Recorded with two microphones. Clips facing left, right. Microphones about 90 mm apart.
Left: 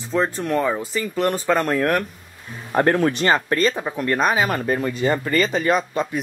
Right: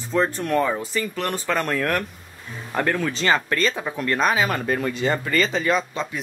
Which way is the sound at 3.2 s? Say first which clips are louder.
Even; 25° left (ahead or behind).